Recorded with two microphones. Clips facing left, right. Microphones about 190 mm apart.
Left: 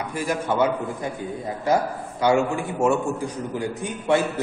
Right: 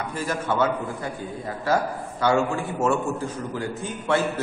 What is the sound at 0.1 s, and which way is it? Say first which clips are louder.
A man's voice: left 3 dB; 15° left (ahead or behind).